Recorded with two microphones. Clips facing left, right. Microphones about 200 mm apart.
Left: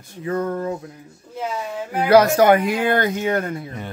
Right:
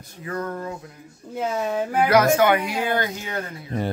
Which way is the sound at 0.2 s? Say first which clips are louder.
Left 6 dB; 25° left (ahead or behind).